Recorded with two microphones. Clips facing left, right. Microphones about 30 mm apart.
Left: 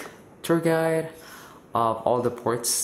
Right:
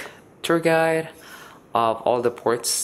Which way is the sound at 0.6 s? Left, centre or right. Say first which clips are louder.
Right 5 dB; right.